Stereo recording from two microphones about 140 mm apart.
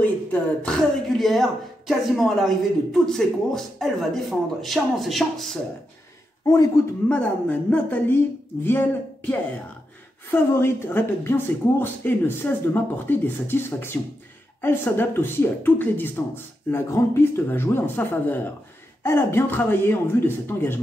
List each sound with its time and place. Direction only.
0.0 s speech: 10° left (ahead or behind)
6.4 s a man's voice: 25° left (ahead or behind)
7.1 s speech: 10° left (ahead or behind)
10.3 s speech: 15° left (ahead or behind)